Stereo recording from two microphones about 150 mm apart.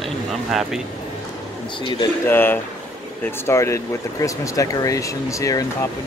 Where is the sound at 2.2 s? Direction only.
15° left (ahead or behind).